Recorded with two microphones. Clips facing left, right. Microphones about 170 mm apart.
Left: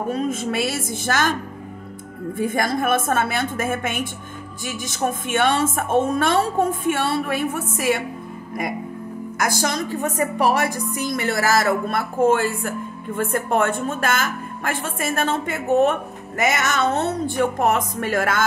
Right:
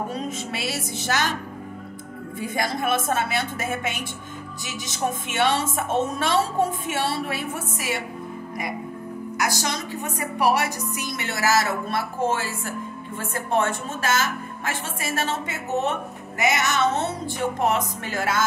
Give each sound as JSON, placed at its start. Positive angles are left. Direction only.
{"t": 0.1, "sound": "a woman's voice", "side_deg": 50}
{"t": 2.3, "sound": "a woman's voice", "side_deg": 50}
{"t": 9.4, "sound": "a woman's voice", "side_deg": 50}